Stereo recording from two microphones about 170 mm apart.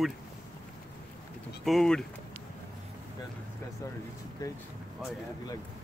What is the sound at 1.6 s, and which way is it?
Speech, centre (ahead or behind).